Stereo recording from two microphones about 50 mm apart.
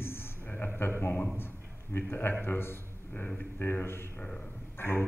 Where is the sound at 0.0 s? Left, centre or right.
Left.